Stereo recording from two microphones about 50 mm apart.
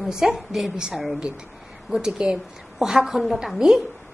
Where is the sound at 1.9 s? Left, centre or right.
Centre.